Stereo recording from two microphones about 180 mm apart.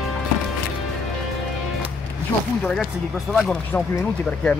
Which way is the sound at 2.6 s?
5° left (ahead or behind).